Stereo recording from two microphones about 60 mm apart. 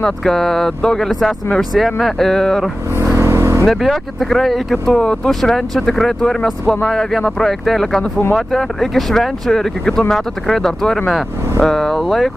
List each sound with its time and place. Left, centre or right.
0.0 s speech: centre
3.2 s vehicle: right
3.6 s speech: centre